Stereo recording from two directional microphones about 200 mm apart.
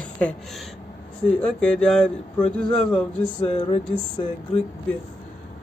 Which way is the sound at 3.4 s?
30° left (ahead or behind).